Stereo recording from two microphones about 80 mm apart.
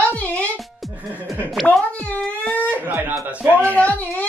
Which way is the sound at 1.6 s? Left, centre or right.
Centre.